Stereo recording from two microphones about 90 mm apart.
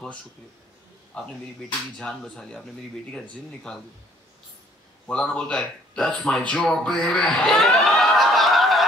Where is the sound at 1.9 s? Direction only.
10° left (ahead or behind).